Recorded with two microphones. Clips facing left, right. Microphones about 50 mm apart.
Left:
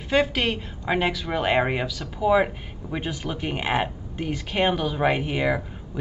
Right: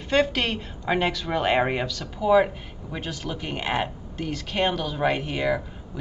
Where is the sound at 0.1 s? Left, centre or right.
Centre.